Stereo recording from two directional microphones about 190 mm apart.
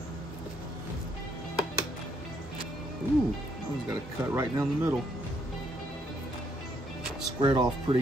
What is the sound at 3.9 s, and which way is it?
Speech, 15° right (ahead or behind).